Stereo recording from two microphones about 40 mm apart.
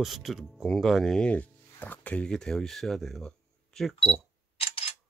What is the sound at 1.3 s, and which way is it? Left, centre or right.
Music, left.